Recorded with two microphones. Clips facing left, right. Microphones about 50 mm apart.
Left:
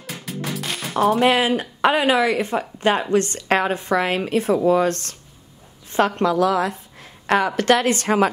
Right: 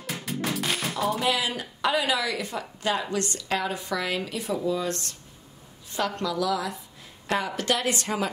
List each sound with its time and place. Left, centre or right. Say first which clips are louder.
0.2 s music: left 1 dB; centre
1.2 s a woman's voice: left 9 dB; left
5.9 s a woman's voice: left 9 dB; left